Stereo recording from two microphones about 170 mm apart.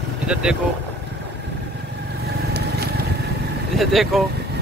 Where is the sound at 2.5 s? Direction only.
65° right (ahead or behind).